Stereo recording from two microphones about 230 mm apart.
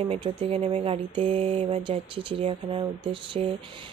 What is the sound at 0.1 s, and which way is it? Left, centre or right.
Speech, right.